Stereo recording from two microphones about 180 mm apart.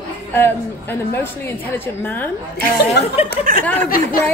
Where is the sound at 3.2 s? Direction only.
35° left (ahead or behind).